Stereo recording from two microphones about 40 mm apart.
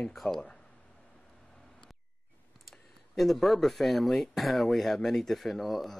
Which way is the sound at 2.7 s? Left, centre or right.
Centre.